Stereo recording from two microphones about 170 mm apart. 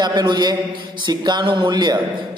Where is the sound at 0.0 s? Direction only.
25° right (ahead or behind).